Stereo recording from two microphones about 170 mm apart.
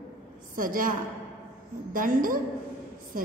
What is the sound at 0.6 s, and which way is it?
A woman's voice, 55° right (ahead or behind).